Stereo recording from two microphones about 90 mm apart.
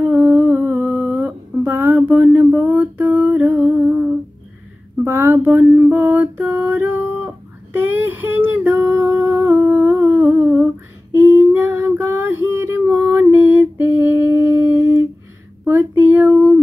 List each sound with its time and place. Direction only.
0.0 s humming: 25° right (ahead or behind)
5.0 s a sound: 25° right (ahead or behind)
11.1 s female singing: 25° right (ahead or behind)
16.0 s female singing: 20° right (ahead or behind)